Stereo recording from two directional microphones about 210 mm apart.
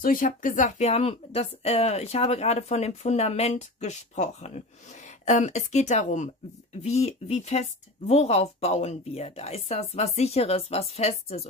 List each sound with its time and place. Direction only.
0.0 s speech: 40° left (ahead or behind)